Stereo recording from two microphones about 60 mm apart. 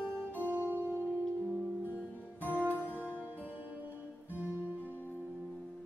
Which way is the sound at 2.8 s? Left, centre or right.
Left.